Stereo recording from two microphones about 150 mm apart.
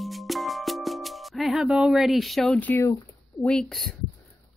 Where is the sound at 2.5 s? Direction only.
15° left (ahead or behind).